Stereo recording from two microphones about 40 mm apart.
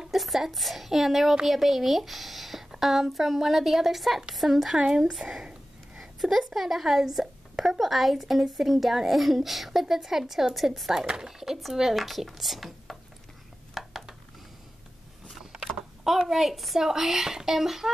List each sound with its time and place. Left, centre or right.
0.1 s speech: centre
4.7 s speech: centre
5.9 s a woman's voice: centre
11.0 s speech: centre
13.8 s a sound: centre
16.0 s speech: centre